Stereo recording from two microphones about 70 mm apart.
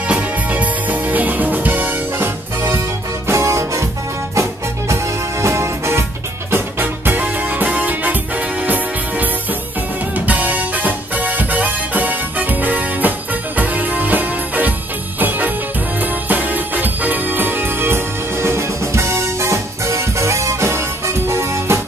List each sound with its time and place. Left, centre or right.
0.1 s music: right
6.5 s music: right